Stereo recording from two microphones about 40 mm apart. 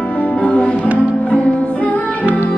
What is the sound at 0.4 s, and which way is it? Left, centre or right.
Music, left.